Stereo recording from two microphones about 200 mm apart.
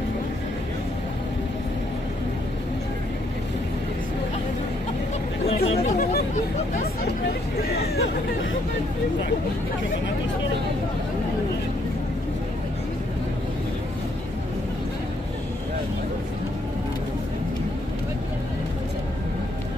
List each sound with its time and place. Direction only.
5.5 s speech: 30° left (ahead or behind)
5.9 s a sound: 40° left (ahead or behind)
7.7 s hubbub: 55° left (ahead or behind)